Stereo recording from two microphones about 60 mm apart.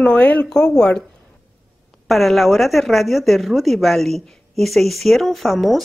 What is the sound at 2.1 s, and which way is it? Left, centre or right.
A woman's voice, centre.